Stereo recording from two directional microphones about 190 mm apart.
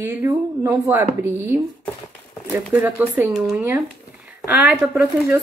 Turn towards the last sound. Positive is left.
turn(degrees=-5)  # may be behind; listen again after turning